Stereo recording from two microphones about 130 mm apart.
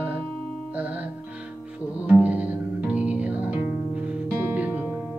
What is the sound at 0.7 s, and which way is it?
Music, 10° right (ahead or behind).